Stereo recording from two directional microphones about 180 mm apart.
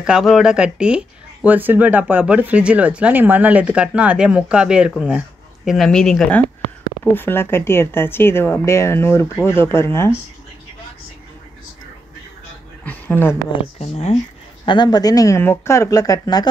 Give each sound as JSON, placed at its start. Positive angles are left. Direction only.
{"t": 0.0, "sound": "speech", "side_deg": 0}
{"t": 12.8, "sound": "speech", "side_deg": 10}
{"t": 13.7, "sound": "speech", "side_deg": 35}